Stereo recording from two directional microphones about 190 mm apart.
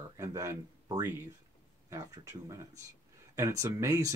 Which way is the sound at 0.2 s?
15° right (ahead or behind).